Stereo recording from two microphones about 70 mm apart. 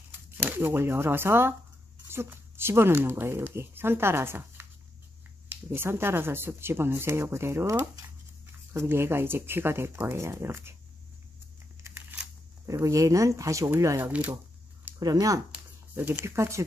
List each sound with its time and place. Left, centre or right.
0.7 s speech: right
12.6 s speech: right
14.0 s speech: right
15.0 s speech: right
16.0 s speech: right
16.3 s speech: right